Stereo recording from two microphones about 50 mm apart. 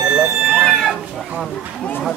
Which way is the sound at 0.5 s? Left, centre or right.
Centre.